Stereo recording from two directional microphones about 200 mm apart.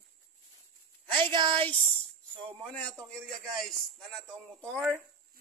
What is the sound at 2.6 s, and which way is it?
Speech, 5° left (ahead or behind).